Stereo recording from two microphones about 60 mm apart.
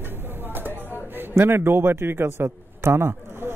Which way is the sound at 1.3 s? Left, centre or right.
Right.